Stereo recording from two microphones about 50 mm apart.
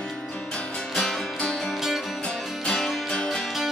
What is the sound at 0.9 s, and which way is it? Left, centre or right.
Music, centre.